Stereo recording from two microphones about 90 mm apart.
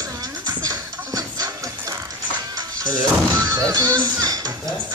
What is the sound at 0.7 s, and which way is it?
Music, 45° right (ahead or behind).